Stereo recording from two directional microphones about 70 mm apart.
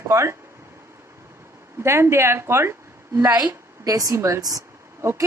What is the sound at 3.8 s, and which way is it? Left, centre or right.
Speech, right.